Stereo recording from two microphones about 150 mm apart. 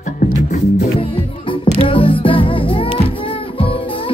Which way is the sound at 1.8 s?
35° left (ahead or behind).